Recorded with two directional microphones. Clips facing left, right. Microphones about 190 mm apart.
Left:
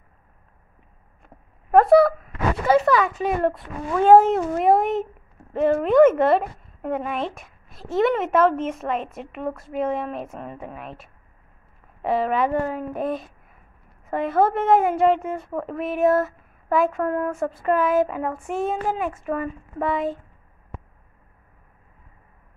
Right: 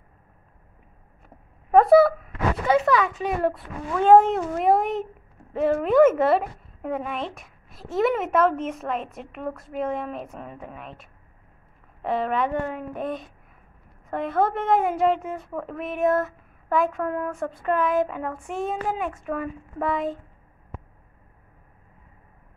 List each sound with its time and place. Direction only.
1.8 s a woman's voice: centre (ahead or behind)